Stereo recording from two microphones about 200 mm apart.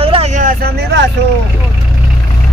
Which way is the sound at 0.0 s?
30° right (ahead or behind).